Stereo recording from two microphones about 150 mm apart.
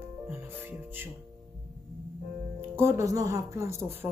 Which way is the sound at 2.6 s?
15° right (ahead or behind).